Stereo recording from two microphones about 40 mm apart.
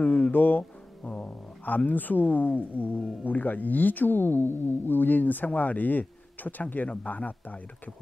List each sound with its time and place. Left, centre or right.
0.0 s speech: left
1.0 s cat: left
1.8 s speech: left